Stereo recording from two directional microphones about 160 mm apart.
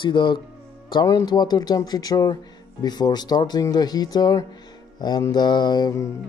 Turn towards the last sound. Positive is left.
turn(degrees=20)  # may be behind; listen again after turning